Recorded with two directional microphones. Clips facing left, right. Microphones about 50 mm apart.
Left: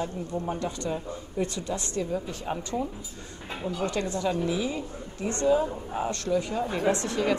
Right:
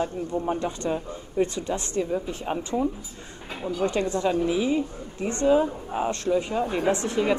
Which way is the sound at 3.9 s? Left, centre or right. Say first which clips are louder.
Right 4 dB; right.